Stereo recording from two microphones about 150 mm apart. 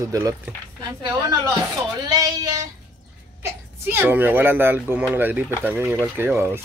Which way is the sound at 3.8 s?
15° right (ahead or behind).